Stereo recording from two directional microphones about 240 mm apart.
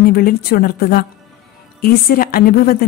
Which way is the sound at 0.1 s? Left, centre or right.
Left.